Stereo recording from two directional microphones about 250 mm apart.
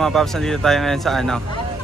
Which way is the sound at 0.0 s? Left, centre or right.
Centre.